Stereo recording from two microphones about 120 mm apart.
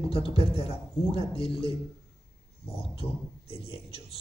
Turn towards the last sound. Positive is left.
turn(degrees=55)  # may be behind; listen again after turning